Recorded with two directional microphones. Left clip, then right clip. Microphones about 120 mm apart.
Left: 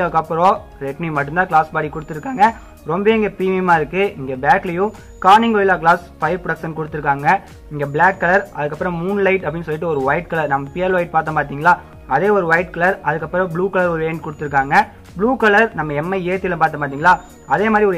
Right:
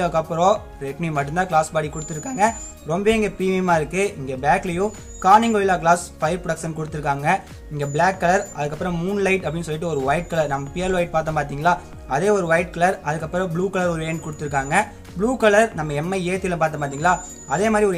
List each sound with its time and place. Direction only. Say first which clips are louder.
0.0 s speech: left 4 dB; 35° right (ahead or behind)